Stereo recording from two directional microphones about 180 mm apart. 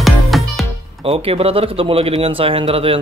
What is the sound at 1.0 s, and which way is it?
Speech, 30° right (ahead or behind).